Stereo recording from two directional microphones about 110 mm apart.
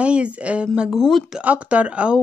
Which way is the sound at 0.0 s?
10° right (ahead or behind).